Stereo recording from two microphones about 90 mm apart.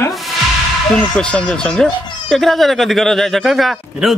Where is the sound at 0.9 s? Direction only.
5° left (ahead or behind).